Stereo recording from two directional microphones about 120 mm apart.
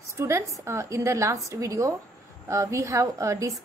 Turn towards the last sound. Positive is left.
turn(degrees=-25)  # may be behind; listen again after turning